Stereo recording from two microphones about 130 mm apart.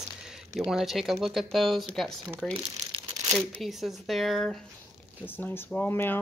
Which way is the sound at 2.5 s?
45° right (ahead or behind).